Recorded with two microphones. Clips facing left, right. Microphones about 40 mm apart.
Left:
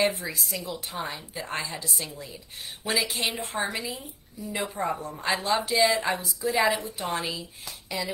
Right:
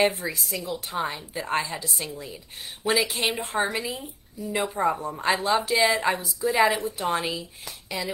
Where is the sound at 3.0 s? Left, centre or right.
Right.